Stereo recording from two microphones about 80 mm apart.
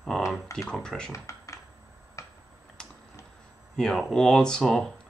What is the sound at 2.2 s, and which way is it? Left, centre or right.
Tick-tock, left.